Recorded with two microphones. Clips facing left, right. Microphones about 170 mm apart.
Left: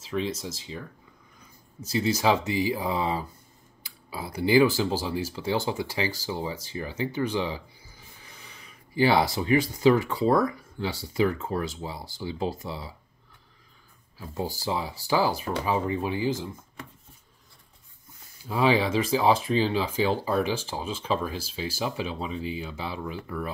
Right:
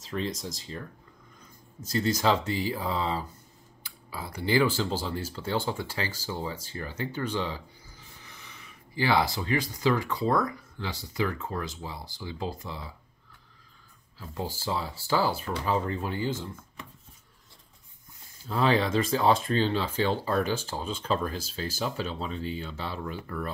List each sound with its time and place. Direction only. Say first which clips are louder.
0.0 s speech: left 3 dB; 5° left (ahead or behind)
1.9 s speech: left 2 dB; 5° left (ahead or behind)
9.0 s speech: left 4 dB; 25° left (ahead or behind)
11.1 s speech: left 5 dB; 25° left (ahead or behind)
14.1 s speech: left 3 dB; 15° left (ahead or behind)
18.5 s speech: left 2 dB; 10° left (ahead or behind)